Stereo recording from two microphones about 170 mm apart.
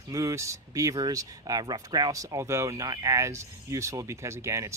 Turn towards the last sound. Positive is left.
turn(degrees=-15)  # may be behind; listen again after turning